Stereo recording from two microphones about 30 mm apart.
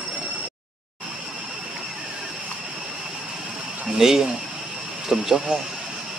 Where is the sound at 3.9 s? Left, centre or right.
Centre.